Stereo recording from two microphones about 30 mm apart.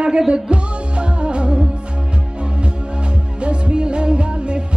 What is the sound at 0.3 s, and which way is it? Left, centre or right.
Music, right.